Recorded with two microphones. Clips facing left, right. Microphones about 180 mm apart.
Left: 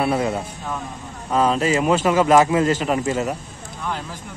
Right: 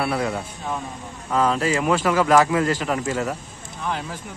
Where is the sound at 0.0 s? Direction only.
20° left (ahead or behind).